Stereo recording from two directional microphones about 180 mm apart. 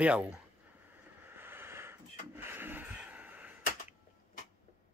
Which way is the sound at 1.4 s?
10° right (ahead or behind).